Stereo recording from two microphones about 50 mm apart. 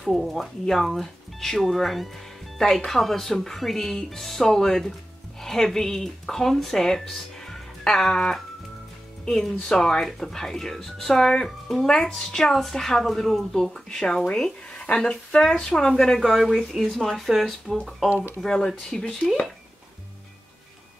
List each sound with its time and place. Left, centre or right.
0.0 s speech: centre
16.9 s speech: centre
18.4 s speech: centre